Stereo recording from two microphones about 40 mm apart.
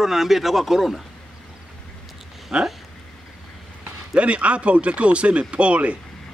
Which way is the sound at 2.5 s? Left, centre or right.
Right.